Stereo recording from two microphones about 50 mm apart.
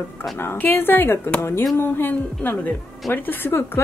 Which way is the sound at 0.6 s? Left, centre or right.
Left.